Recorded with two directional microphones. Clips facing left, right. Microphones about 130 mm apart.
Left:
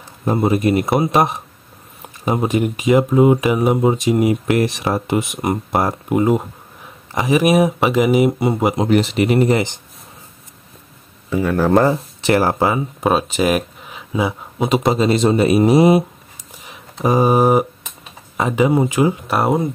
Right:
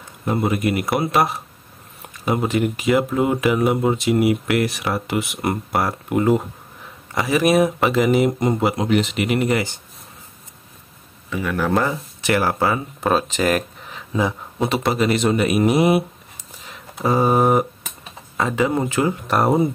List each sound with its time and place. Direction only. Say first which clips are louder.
0.2 s speech: left 4 dB; 25° left (ahead or behind)
2.4 s speech: left 4 dB; 15° left (ahead or behind)
8.8 s speech: left 4 dB; 35° left (ahead or behind)
11.2 s speech: left 6 dB; 35° left (ahead or behind)
12.5 s speech: left 3 dB; 15° left (ahead or behind)
17.0 s speech: left 3 dB; 15° left (ahead or behind)